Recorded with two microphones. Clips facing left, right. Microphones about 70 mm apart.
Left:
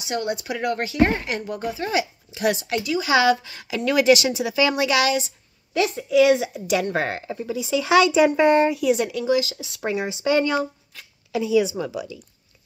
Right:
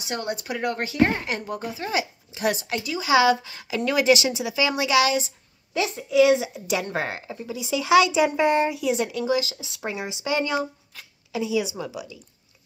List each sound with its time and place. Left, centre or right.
0.0 s speech: right
1.9 s speech: right
7.2 s speech: centre
8.9 s speech: right
10.0 s speech: centre